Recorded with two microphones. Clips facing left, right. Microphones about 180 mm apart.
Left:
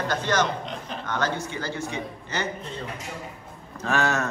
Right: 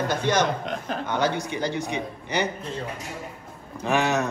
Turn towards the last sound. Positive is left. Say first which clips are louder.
# right 2 dB
turn(degrees=-15)  # may be behind; listen again after turning